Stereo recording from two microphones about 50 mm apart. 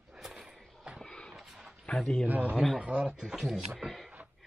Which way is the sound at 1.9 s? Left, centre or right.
Left.